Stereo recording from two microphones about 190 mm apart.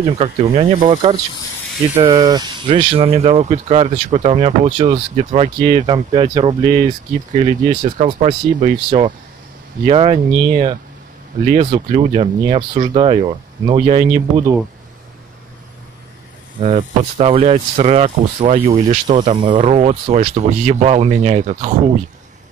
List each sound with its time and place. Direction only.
0.0 s speech: 30° right (ahead or behind)
16.5 s speech: 35° right (ahead or behind)
19.3 s speech: 25° right (ahead or behind)